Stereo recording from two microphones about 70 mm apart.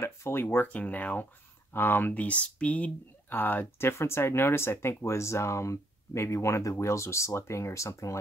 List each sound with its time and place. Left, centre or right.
0.0 s speech: left
0.7 s speech: left